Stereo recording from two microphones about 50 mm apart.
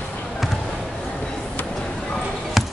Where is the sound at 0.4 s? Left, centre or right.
Centre.